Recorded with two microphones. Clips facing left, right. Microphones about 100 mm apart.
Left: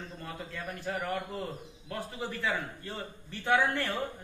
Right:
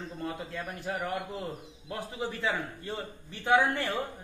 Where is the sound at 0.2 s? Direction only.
20° right (ahead or behind).